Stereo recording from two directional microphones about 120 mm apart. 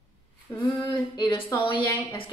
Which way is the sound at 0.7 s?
35° left (ahead or behind).